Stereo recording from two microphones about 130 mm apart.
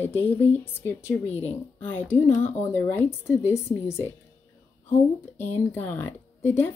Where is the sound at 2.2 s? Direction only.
65° left (ahead or behind).